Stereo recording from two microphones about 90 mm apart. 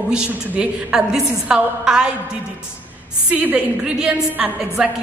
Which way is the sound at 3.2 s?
15° right (ahead or behind).